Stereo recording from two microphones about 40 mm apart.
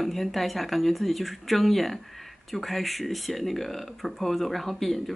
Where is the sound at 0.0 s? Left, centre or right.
Centre.